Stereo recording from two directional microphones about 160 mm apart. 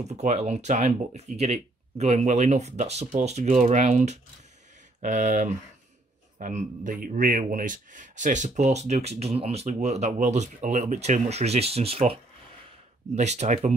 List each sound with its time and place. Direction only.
0.1 s a man's voice: 45° right (ahead or behind)